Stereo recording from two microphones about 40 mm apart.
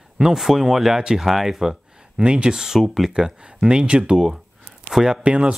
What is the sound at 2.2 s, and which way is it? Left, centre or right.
Speech, right.